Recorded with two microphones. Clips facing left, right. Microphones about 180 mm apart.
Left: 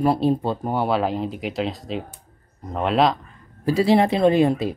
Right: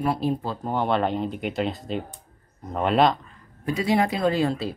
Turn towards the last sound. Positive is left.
turn(degrees=15)  # may be behind; listen again after turning